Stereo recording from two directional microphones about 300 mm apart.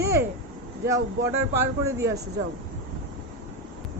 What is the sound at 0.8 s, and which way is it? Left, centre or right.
Speech, centre.